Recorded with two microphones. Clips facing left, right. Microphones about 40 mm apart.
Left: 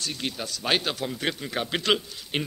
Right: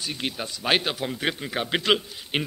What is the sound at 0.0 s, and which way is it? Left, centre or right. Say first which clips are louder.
A man's voice: right 1 dB; centre.